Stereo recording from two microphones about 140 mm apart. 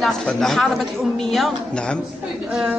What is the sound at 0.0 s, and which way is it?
A woman's voice, centre (ahead or behind).